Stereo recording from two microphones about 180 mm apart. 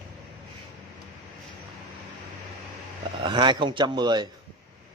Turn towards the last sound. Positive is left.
turn(degrees=-25)  # may be behind; listen again after turning